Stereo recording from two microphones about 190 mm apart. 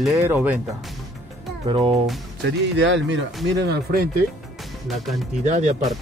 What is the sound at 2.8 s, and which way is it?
Speech, 75° right (ahead or behind).